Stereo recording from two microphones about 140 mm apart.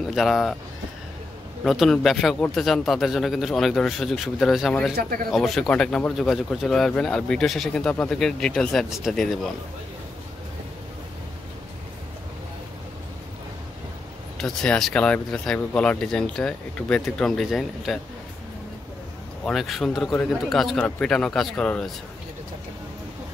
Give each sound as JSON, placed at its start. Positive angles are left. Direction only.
{"t": 0.0, "sound": "speech", "side_deg": 0}
{"t": 1.6, "sound": "speech", "side_deg": 0}
{"t": 14.4, "sound": "speech", "side_deg": 5}
{"t": 19.4, "sound": "speech", "side_deg": 0}